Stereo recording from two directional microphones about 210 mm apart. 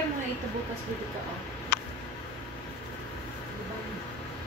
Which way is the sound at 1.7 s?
50° left (ahead or behind).